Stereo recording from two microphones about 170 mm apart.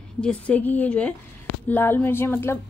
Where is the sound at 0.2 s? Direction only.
5° left (ahead or behind).